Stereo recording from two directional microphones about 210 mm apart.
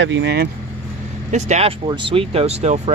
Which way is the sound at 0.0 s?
60° right (ahead or behind).